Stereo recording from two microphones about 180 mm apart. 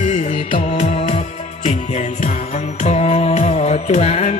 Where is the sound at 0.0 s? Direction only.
40° left (ahead or behind).